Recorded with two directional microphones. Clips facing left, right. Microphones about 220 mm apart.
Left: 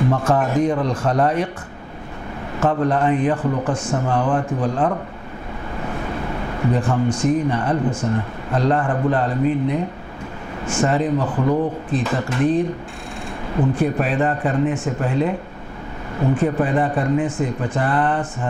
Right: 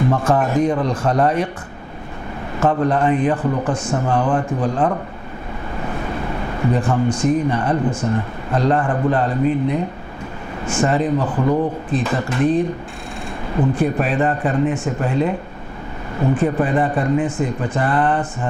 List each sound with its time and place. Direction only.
0.2 s speech: 10° right (ahead or behind)
2.6 s speech: 20° right (ahead or behind)
3.4 s speech: 25° right (ahead or behind)
5.8 s a sound: 20° right (ahead or behind)
7.1 s speech: 10° right (ahead or behind)
11.1 s speech: 30° right (ahead or behind)
12.0 s speech: 10° right (ahead or behind)
13.6 s speech: 15° right (ahead or behind)